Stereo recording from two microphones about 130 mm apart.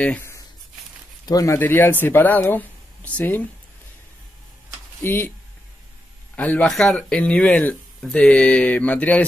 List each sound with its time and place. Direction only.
0.0 s speech: 15° left (ahead or behind)
1.2 s speech: 25° left (ahead or behind)
1.6 s speech: 15° left (ahead or behind)
5.0 s speech: 15° left (ahead or behind)
6.3 s speech: 10° left (ahead or behind)